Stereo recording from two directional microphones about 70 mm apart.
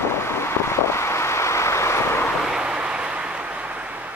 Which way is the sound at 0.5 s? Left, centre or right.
Left.